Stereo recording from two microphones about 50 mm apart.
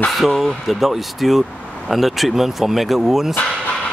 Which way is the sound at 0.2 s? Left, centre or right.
Centre.